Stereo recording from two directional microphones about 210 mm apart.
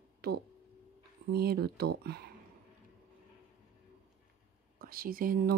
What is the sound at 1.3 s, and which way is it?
Speech, 45° right (ahead or behind).